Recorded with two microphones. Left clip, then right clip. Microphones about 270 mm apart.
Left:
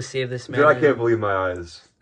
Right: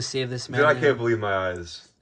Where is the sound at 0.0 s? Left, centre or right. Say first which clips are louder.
Left 2 dB; centre.